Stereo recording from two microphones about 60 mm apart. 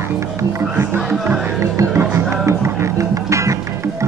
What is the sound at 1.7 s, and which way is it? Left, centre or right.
Music, right.